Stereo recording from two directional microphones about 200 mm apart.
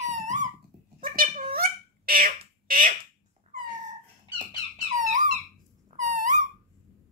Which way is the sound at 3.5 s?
40° right (ahead or behind).